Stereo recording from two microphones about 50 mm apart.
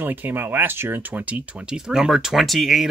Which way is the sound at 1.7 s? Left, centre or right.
Centre.